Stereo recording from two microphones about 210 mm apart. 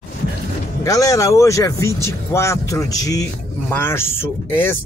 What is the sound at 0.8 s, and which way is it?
Speech, 15° left (ahead or behind).